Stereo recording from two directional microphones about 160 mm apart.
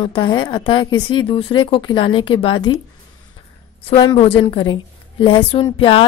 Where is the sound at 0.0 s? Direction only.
30° left (ahead or behind).